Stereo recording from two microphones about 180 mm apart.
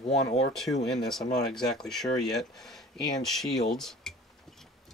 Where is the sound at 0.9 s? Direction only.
Centre (ahead or behind).